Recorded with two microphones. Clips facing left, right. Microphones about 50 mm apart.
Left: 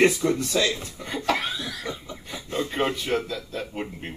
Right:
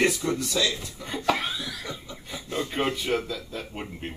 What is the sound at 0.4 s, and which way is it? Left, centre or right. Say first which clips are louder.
Speech: left 2 dB; left.